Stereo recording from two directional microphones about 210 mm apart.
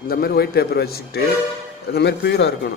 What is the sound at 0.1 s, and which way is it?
A man's voice, 45° left (ahead or behind).